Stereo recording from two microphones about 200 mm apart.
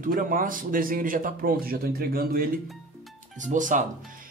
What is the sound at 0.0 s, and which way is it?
A man's voice, 45° right (ahead or behind).